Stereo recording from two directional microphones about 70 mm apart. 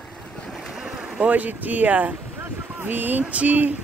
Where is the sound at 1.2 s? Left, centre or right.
Right.